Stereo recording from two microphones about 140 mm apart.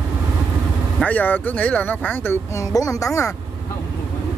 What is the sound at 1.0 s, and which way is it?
Speech, 10° left (ahead or behind).